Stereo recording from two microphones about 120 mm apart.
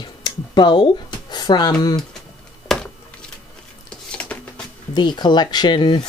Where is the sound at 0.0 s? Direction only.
40° left (ahead or behind).